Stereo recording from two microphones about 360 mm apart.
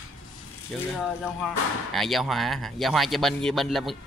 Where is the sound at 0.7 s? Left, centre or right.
Centre.